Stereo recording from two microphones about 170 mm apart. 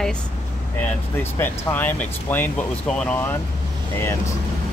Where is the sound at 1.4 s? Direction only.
10° left (ahead or behind).